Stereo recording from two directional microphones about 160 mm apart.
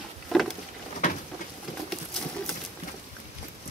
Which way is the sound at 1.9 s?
5° left (ahead or behind).